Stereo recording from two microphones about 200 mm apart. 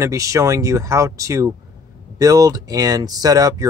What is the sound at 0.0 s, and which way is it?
Speech, 15° right (ahead or behind).